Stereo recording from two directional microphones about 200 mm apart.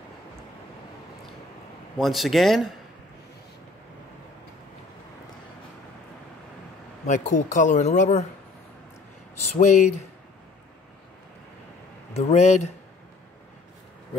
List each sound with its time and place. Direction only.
2.0 s a man's voice: centre (ahead or behind)
7.1 s speech: 40° left (ahead or behind)
9.6 s speech: 35° left (ahead or behind)
12.2 s speech: 35° left (ahead or behind)